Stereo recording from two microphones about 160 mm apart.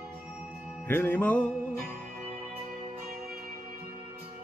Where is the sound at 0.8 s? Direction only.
15° left (ahead or behind).